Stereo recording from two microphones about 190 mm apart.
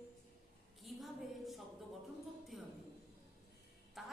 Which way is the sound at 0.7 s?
Centre (ahead or behind).